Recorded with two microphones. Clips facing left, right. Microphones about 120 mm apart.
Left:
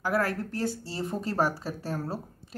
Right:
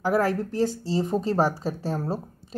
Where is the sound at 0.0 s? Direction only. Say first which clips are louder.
Right 5 dB; 20° right (ahead or behind).